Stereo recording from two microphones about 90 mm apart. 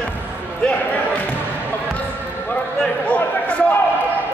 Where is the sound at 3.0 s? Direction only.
15° left (ahead or behind).